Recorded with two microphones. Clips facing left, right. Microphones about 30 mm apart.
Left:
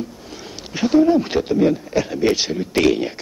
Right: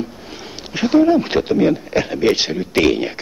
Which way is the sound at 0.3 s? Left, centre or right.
Centre.